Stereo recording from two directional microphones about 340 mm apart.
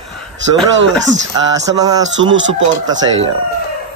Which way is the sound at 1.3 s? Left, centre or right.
Centre.